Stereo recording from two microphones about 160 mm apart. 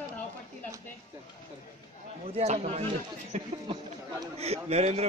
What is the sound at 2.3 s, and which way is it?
Speech, 45° right (ahead or behind).